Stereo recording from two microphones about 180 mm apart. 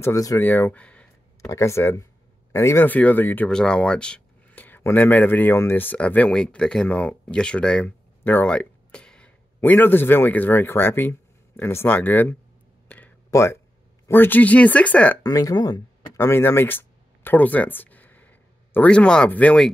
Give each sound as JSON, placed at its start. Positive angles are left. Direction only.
{"t": 0.0, "sound": "speech", "side_deg": 20}
{"t": 12.8, "sound": "a sound", "side_deg": 10}
{"t": 14.0, "sound": "speech", "side_deg": 10}
{"t": 15.2, "sound": "speech", "side_deg": 20}